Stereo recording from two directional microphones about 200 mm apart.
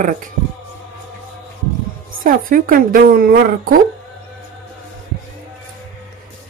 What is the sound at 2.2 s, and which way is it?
A woman's voice, 45° right (ahead or behind).